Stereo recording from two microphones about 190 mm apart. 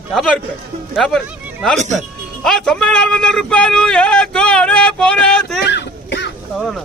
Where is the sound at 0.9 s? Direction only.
Centre (ahead or behind).